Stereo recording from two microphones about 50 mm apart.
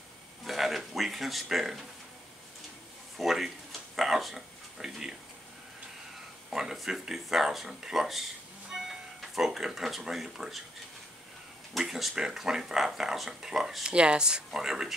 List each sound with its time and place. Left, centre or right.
0.5 s a sound: centre
3.2 s speech: centre
6.5 s speech: centre
11.8 s speech: centre
13.8 s speech: centre